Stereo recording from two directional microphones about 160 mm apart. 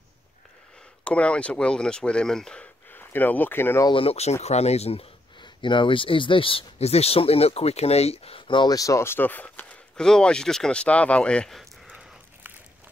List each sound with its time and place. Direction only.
1.0 s speech: 10° left (ahead or behind)
3.9 s speech: 35° left (ahead or behind); by 11.6 s 5° left (ahead or behind)
11.9 s a sound: 10° right (ahead or behind)